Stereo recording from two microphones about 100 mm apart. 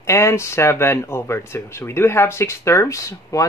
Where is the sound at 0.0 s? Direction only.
25° left (ahead or behind).